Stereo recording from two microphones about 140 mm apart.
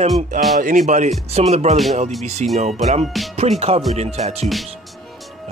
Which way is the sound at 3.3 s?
50° right (ahead or behind).